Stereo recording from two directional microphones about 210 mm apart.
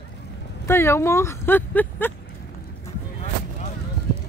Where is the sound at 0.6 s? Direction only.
10° left (ahead or behind).